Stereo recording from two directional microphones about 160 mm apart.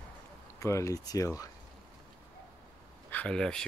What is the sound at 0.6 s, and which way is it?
Speech, 20° left (ahead or behind).